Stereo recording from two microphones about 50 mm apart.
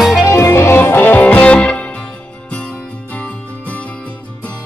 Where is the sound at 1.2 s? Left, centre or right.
Left.